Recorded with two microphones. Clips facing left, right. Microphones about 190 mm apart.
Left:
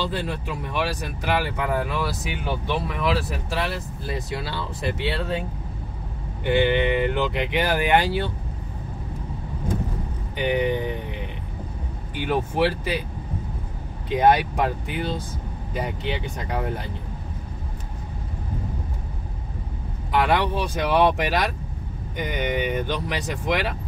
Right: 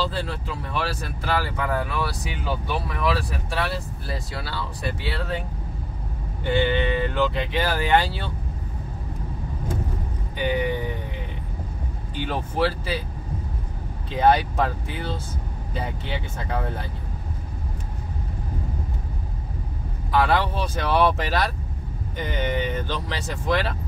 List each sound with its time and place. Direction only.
0.1 s speech: 15° left (ahead or behind)
6.4 s speech: 15° left (ahead or behind)
10.3 s vehicle: 20° left (ahead or behind)
12.3 s speech: 15° left (ahead or behind)
14.0 s speech: 15° left (ahead or behind)
20.1 s speech: 20° left (ahead or behind)